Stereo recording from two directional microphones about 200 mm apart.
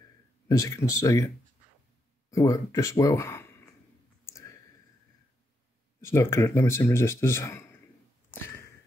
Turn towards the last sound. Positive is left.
turn(degrees=15)  # may be behind; listen again after turning